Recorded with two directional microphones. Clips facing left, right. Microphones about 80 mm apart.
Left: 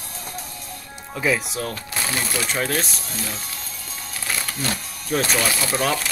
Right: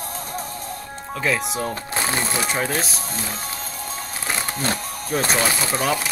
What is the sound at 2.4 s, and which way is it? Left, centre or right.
Speech, centre.